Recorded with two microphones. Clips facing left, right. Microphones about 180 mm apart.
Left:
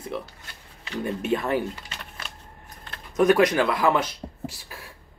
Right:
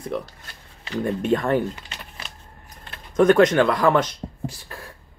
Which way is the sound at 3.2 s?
5° left (ahead or behind).